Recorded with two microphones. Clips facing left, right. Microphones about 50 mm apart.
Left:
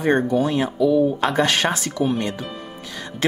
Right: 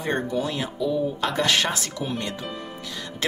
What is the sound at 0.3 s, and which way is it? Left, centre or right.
Speech, left.